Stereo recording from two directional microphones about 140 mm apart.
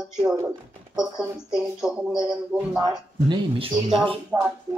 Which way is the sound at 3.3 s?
35° right (ahead or behind).